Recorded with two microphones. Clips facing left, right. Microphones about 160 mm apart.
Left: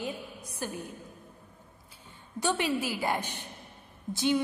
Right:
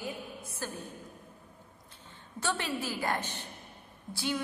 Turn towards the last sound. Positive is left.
turn(degrees=20)  # may be behind; listen again after turning